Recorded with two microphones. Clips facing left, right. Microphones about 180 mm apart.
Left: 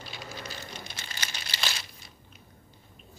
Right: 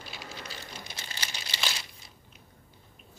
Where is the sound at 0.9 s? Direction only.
30° right (ahead or behind).